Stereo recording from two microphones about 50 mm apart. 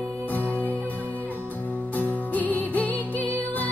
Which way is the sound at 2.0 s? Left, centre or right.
Left.